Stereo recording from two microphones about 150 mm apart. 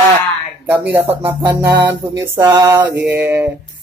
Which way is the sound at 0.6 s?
10° right (ahead or behind).